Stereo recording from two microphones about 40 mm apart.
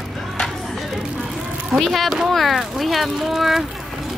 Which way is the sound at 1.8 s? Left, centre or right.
Centre.